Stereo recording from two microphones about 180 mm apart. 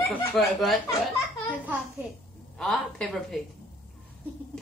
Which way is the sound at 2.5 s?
5° left (ahead or behind).